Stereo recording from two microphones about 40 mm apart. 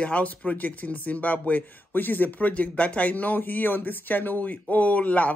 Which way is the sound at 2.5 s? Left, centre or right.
Left.